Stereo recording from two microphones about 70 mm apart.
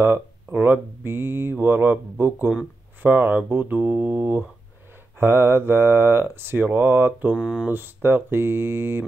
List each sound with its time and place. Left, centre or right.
0.0 s a sound: right
0.6 s speech: right
7.3 s speech: centre
7.7 s speech: right